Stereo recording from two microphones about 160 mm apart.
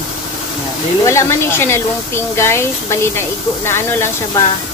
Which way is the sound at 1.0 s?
15° left (ahead or behind).